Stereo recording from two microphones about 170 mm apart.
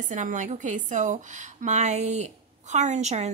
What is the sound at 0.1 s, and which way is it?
A woman's voice, 45° right (ahead or behind).